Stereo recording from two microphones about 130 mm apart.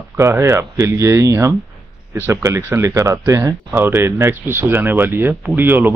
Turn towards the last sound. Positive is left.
turn(degrees=-15)  # may be behind; listen again after turning